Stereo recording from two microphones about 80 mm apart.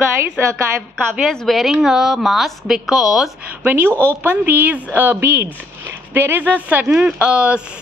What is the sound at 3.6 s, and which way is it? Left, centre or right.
A woman's voice, right.